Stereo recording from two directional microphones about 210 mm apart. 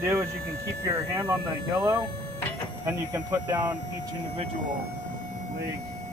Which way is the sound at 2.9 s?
15° right (ahead or behind).